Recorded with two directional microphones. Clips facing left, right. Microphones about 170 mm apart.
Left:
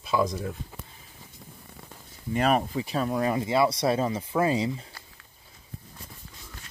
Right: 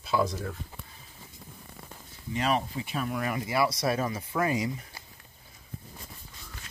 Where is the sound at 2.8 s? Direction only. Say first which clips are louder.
Left 5 dB; 35° left (ahead or behind).